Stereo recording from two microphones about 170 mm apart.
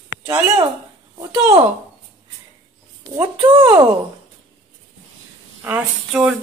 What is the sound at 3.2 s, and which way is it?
Speech, 30° right (ahead or behind).